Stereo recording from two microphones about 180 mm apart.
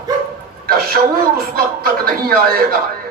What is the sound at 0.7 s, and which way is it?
Speech, 55° right (ahead or behind).